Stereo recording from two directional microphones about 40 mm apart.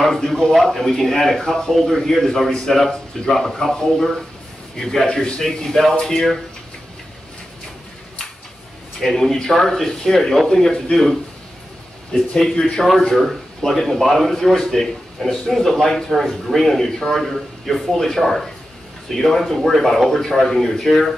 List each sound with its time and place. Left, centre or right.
0.0 s speech: centre
5.0 s a man's voice: left
5.4 s speech: centre
9.1 s speech: centre
12.4 s speech: centre
12.7 s speech: centre